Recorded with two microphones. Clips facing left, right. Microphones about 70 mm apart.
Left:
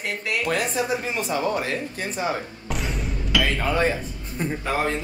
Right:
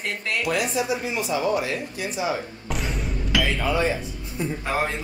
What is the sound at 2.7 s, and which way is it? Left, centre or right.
Music, centre.